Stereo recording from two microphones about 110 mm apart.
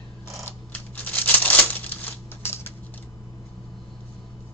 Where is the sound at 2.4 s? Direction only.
20° left (ahead or behind).